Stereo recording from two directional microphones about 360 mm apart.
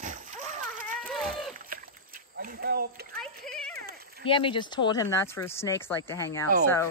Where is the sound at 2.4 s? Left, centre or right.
Right.